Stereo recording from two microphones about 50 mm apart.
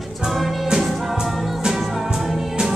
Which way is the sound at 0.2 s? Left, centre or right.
Centre.